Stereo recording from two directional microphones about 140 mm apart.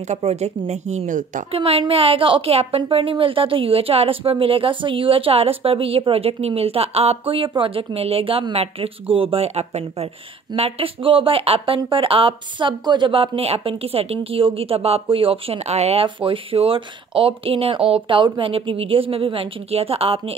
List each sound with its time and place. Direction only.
0.1 s speech: 50° right (ahead or behind); by 1.4 s 65° right (ahead or behind)
1.5 s speech: 45° right (ahead or behind)